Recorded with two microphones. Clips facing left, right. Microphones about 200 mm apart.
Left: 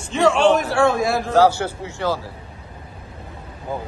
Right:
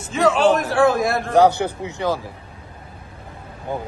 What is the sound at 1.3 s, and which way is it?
Speech, 15° right (ahead or behind).